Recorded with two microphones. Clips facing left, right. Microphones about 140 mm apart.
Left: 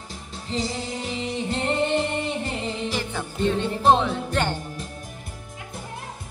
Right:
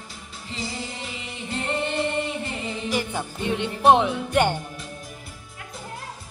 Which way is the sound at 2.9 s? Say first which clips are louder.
Right 2 dB; 15° right (ahead or behind).